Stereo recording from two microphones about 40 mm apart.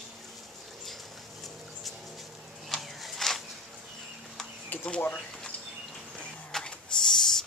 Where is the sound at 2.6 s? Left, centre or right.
Centre.